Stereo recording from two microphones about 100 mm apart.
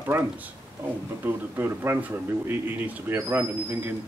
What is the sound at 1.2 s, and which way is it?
Speech, 20° right (ahead or behind).